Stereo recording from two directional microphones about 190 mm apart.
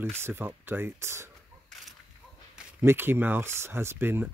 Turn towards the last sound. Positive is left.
turn(degrees=-10)  # may be behind; listen again after turning